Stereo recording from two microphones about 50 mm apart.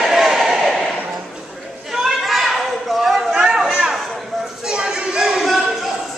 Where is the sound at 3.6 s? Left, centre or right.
Centre.